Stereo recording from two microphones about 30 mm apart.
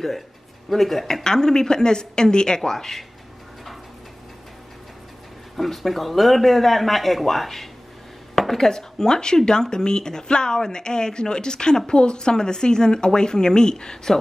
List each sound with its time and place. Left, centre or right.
0.7 s a man's voice: centre
1.0 s speech: centre
5.6 s a man's voice: centre; by 11.9 s left
11.9 s speech: left